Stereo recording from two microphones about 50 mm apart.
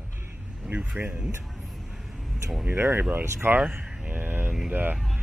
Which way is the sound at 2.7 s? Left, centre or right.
Right.